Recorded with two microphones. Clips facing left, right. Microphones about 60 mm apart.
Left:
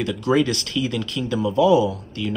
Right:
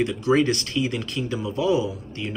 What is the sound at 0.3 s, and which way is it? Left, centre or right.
Speech, right.